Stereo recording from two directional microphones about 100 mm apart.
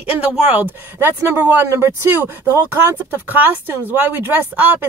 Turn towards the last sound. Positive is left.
turn(degrees=-15)  # may be behind; listen again after turning